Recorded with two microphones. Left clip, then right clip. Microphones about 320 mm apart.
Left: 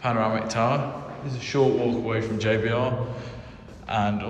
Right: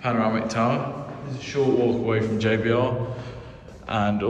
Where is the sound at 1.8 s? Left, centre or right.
Centre.